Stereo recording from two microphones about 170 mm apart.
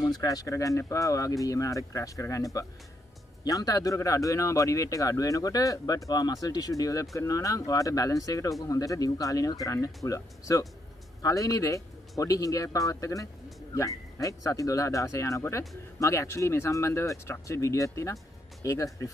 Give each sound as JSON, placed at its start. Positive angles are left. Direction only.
{"t": 0.2, "sound": "speech", "side_deg": 20}